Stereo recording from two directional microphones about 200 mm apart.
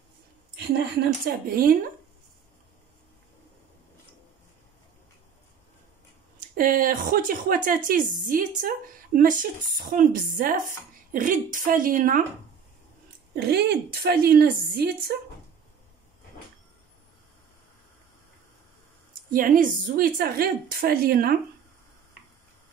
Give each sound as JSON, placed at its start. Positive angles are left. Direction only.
{"t": 1.2, "sound": "a woman's voice", "side_deg": -45}
{"t": 6.5, "sound": "a woman's voice", "side_deg": -45}
{"t": 13.3, "sound": "a woman's voice", "side_deg": -55}
{"t": 19.3, "sound": "a woman's voice", "side_deg": -45}